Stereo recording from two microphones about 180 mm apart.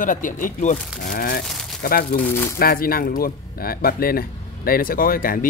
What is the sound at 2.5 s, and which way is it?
Speech, 55° left (ahead or behind).